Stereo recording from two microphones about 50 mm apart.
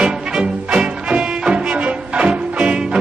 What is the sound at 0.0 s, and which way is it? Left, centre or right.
Music, centre.